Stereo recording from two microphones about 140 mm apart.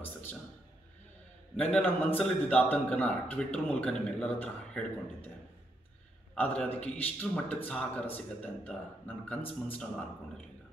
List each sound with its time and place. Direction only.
0.0 s a sound: 15° left (ahead or behind)
1.6 s a man's voice: 10° left (ahead or behind)
6.3 s a man's voice: 10° left (ahead or behind)